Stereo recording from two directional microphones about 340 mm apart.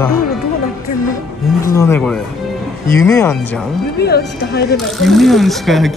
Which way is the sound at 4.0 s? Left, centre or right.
Left.